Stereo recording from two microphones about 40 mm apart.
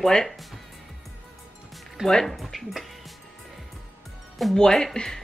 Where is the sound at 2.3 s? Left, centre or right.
Centre.